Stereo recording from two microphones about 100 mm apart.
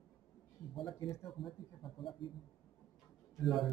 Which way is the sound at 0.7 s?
55° left (ahead or behind).